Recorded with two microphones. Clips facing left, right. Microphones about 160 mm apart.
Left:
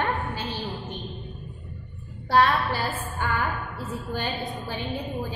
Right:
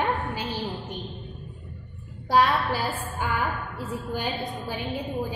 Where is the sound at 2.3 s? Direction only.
10° right (ahead or behind).